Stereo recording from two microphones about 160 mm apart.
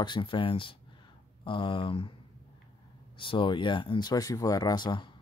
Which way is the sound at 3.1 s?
30° left (ahead or behind).